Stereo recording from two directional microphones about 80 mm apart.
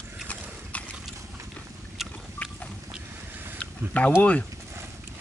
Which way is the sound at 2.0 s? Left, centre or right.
Centre.